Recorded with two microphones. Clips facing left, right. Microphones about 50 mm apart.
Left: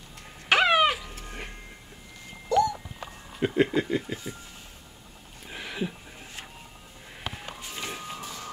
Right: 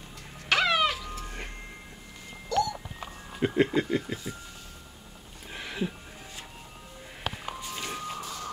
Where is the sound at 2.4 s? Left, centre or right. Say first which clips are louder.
Left 4 dB; centre.